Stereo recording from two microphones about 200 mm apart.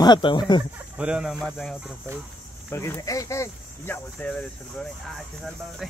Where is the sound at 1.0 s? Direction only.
5° right (ahead or behind).